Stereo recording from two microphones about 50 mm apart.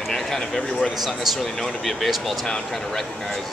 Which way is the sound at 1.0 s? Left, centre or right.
Centre.